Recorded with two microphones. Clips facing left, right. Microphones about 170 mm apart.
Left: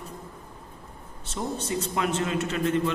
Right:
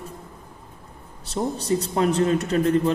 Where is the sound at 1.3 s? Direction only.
35° right (ahead or behind).